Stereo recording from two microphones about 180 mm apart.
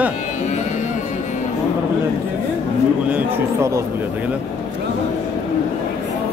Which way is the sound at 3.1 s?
15° right (ahead or behind).